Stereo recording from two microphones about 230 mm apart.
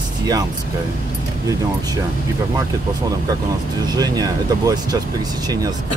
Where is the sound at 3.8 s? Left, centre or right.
Centre.